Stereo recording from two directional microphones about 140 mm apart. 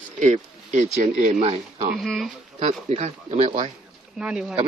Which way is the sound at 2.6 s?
50° right (ahead or behind).